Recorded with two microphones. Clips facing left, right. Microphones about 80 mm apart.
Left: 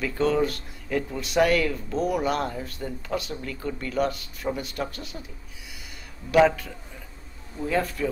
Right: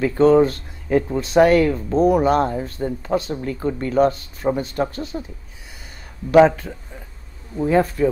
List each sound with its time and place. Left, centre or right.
0.0 s speech: right
6.3 s speech: right